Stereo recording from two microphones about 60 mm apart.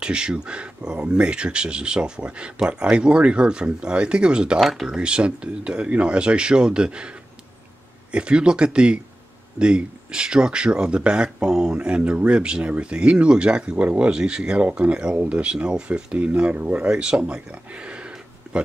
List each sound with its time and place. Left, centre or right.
0.0 s speech: centre
4.6 s speech: centre
4.8 s speech: centre
8.1 s speech: centre